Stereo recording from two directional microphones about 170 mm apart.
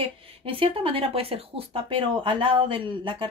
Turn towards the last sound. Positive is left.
turn(degrees=-30)  # may be behind; listen again after turning